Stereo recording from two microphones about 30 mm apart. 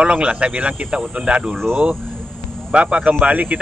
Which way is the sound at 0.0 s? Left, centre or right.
Right.